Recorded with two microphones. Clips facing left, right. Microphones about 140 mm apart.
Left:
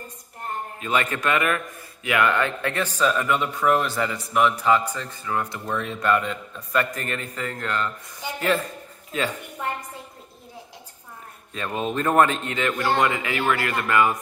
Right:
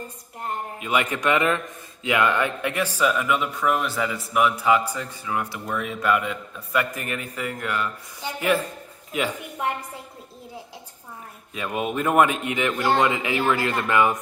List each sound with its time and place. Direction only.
0.7 s a woman's voice: 15° right (ahead or behind)
11.5 s speech: 10° right (ahead or behind)